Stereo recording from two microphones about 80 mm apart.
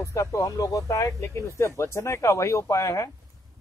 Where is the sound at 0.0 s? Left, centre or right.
Left.